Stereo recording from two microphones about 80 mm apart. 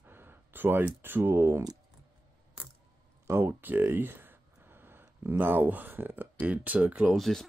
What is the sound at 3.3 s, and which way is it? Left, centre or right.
Speech, right.